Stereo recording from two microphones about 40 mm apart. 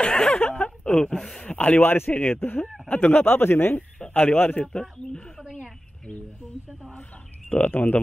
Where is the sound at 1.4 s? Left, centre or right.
Left.